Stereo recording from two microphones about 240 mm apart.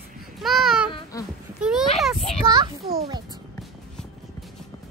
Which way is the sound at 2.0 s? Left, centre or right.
Centre.